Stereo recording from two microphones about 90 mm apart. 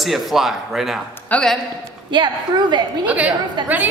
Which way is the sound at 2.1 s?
55° right (ahead or behind).